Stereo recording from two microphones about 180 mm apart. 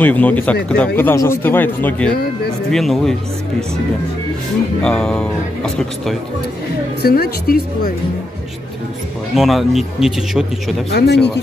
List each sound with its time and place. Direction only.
0.0 s a man's voice: 10° left (ahead or behind)
4.8 s speech: 5° left (ahead or behind)
7.0 s speech: 60° left (ahead or behind)
9.3 s speech: centre (ahead or behind)
10.9 s speech: 70° left (ahead or behind)